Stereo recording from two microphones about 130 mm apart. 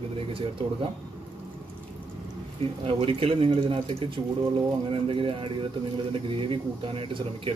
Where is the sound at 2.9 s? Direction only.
45° right (ahead or behind).